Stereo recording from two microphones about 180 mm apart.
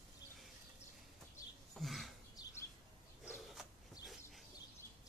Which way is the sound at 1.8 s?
Centre (ahead or behind).